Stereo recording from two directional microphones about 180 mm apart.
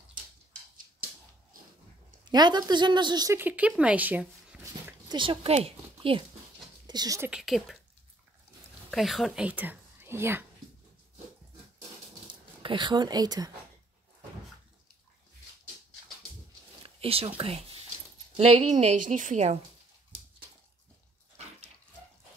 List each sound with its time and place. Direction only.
2.2 s a woman's voice: 25° right (ahead or behind); by 4.9 s 5° right (ahead or behind)
5.1 s speech: 25° right (ahead or behind)
6.9 s speech: 20° right (ahead or behind)
7.2 s a woman's voice: centre (ahead or behind)
8.9 s speech: centre (ahead or behind)
12.6 s a woman's voice: 25° right (ahead or behind)
16.8 s a sound: 30° right (ahead or behind)
17.4 s a woman's voice: 35° right (ahead or behind)